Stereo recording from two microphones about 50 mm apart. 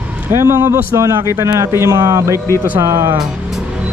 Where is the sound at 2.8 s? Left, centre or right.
Right.